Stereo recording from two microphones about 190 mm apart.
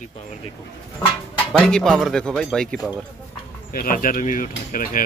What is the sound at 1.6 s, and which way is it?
Speech, 5° left (ahead or behind).